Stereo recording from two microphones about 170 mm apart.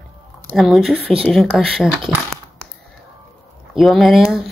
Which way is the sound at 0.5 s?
Centre (ahead or behind).